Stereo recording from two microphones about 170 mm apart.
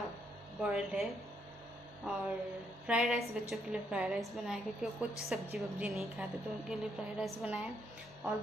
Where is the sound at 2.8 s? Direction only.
5° right (ahead or behind).